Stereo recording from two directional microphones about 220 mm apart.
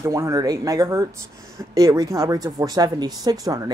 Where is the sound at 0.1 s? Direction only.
15° right (ahead or behind).